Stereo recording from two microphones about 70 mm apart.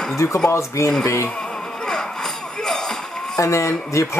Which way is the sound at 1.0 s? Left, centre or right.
Left.